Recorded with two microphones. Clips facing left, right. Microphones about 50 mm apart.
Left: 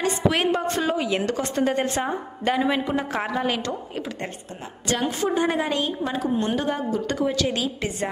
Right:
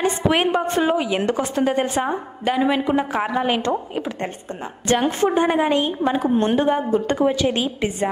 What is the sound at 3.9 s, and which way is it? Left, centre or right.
A woman's voice, right.